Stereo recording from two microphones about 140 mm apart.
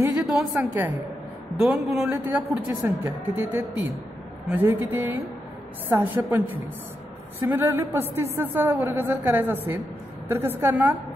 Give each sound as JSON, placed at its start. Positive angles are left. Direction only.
{"t": 0.3, "sound": "a woman's voice", "side_deg": -5}